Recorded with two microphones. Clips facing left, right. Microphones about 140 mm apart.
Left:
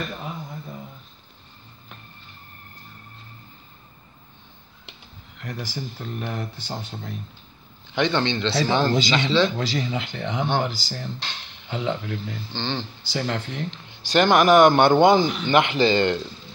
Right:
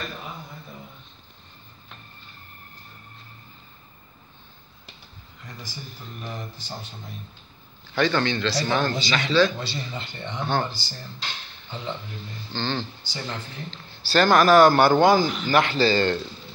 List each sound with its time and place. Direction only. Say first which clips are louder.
5.4 s speech: left 8 dB; 85° left
7.9 s speech: even; 20° left (ahead or behind)
9.6 s speech: left 7 dB; 90° left
12.5 s speech: right 1 dB; 15° left (ahead or behind)
13.1 s speech: left 9 dB; 80° left
13.7 s speech: left 1 dB; 15° left (ahead or behind)